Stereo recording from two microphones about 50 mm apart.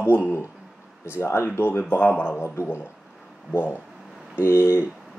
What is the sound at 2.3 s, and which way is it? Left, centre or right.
Speech, left.